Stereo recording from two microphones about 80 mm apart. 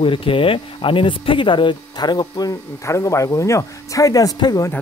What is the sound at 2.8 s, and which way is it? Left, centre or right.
Speech, left.